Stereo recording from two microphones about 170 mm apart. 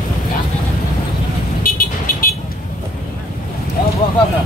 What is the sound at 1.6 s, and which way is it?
Vehicle, 55° left (ahead or behind).